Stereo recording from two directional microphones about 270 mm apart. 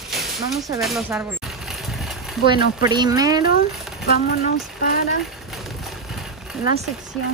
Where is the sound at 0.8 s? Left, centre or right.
Centre.